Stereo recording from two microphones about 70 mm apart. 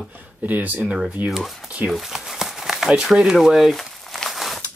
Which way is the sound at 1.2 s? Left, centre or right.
Centre.